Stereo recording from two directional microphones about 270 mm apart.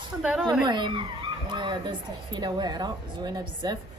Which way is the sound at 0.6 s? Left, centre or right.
Centre.